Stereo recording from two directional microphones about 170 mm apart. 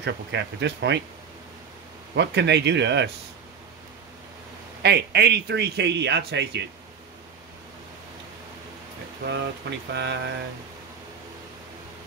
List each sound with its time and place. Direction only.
0.0 s speech: 90° right
2.1 s speech: 90° right
4.8 s a man's voice: 75° right (ahead or behind)
9.2 s speech: 90° right